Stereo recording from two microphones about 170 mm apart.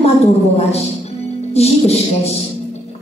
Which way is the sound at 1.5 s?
40° left (ahead or behind).